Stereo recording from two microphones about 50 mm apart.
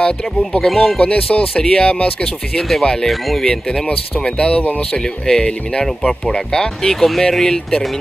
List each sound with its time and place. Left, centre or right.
0.0 s speech: centre
0.7 s speech: centre
0.9 s speech: left
3.1 s speech: centre
3.4 s speech: centre
5.0 s speech: centre